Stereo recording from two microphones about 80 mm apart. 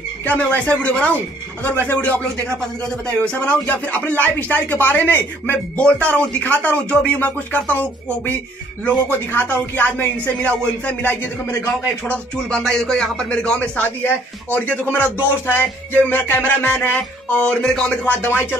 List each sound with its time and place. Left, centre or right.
0.2 s speech: centre
12.4 s speech: centre; by 18.6 s left